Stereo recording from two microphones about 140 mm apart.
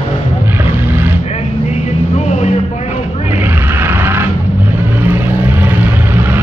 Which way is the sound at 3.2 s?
15° right (ahead or behind).